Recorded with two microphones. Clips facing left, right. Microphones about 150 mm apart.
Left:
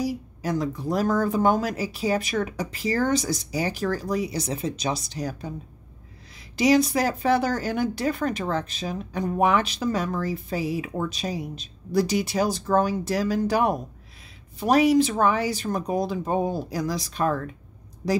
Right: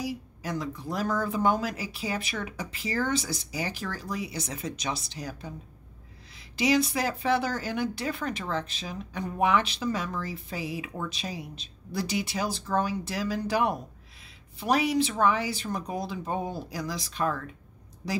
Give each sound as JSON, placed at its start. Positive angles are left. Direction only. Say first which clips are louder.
{"t": 0.0, "sound": "speech", "louder": "left 6 dB", "side_deg": 40}
{"t": 6.5, "sound": "speech", "louder": "left 5 dB", "side_deg": 40}